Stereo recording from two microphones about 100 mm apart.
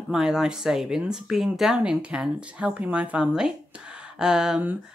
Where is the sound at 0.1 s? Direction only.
5° right (ahead or behind).